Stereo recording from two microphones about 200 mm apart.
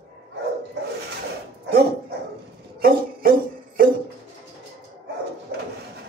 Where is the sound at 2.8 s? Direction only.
45° right (ahead or behind).